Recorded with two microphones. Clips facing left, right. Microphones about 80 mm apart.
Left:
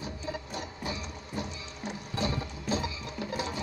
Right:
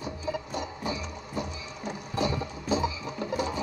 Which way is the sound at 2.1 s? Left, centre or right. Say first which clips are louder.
Right 4 dB; centre.